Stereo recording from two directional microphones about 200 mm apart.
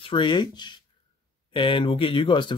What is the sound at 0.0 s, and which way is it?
Speech, 25° left (ahead or behind).